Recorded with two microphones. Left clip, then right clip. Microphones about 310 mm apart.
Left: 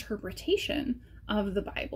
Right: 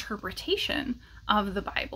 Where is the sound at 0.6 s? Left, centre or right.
Centre.